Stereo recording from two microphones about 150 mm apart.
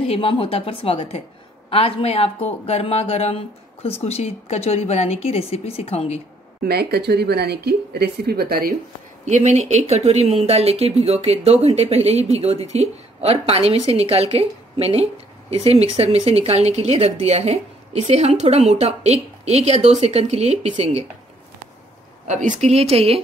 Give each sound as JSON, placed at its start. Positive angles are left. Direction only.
{"t": 0.0, "sound": "a woman's voice", "side_deg": 35}
{"t": 6.6, "sound": "speech", "side_deg": -90}
{"t": 9.2, "sound": "speech", "side_deg": -50}
{"t": 22.3, "sound": "speech", "side_deg": -55}